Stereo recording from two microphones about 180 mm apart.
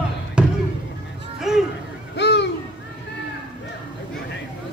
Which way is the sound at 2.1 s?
70° left (ahead or behind).